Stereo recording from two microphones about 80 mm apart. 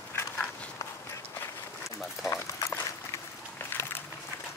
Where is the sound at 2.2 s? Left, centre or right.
Left.